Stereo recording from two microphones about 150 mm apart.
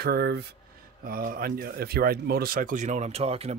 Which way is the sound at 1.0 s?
75° right (ahead or behind).